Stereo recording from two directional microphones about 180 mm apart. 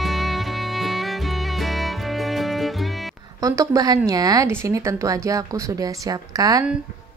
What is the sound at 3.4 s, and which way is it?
A woman's voice, 20° right (ahead or behind).